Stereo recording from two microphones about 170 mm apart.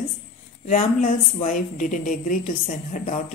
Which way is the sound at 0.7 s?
50° left (ahead or behind).